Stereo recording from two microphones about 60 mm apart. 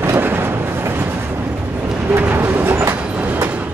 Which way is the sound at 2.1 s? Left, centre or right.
Right.